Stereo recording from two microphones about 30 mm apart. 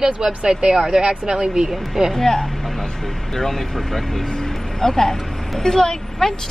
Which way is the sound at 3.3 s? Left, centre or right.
Centre.